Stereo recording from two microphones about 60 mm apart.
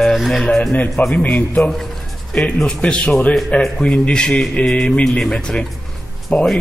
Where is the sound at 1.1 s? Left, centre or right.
Left.